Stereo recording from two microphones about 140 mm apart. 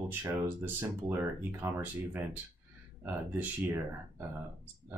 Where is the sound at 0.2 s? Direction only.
15° right (ahead or behind).